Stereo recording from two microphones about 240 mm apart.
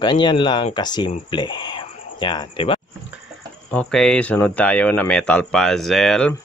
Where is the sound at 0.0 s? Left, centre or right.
Centre.